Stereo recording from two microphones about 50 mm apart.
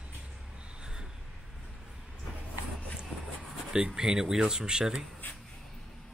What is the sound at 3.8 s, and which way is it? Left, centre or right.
Speech, centre.